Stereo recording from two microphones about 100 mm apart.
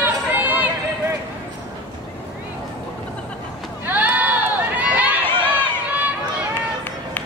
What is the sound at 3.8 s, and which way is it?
Run, 15° right (ahead or behind).